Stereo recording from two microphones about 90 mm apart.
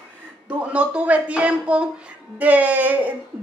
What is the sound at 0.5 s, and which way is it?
A woman's voice, 15° right (ahead or behind).